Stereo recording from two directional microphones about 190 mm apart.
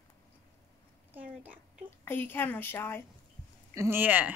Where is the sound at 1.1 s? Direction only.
10° right (ahead or behind).